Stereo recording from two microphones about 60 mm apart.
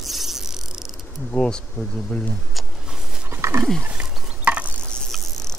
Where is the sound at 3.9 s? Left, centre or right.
Right.